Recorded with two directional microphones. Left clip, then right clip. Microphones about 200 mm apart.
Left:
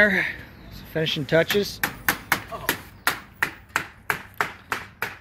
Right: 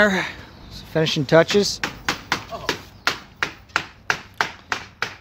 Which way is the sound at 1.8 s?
30° left (ahead or behind).